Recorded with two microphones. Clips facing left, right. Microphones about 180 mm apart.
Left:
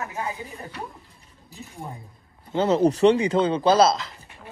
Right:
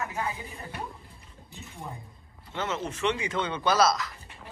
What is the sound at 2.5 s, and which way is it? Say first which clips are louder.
Speech: left 13 dB; 35° left (ahead or behind).